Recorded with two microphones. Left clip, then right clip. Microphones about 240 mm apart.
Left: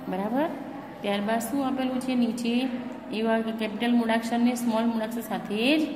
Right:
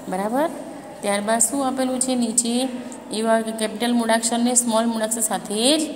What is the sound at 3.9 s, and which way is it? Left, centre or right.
A woman's voice, centre.